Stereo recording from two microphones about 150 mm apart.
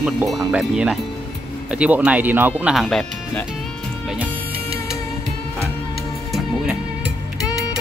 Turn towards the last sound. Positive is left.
turn(degrees=25)  # may be behind; listen again after turning